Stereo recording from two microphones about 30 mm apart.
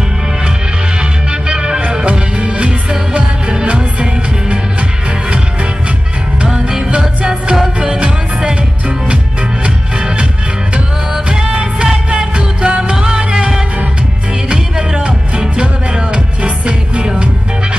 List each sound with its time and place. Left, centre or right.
1.5 s music: right
6.4 s music: right
11.2 s music: right
12.9 s music: right
14.5 s music: right